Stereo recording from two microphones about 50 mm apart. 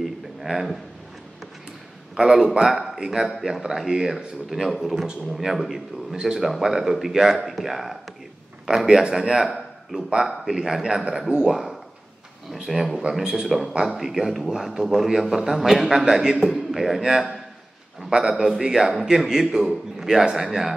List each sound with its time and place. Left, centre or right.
0.0 s a sound: centre
2.2 s a man's voice: right
2.6 s a man's voice: centre
3.3 s a man's voice: centre
9.4 s a sound: centre
10.2 s a man's voice: centre
18.4 s a man's voice: centre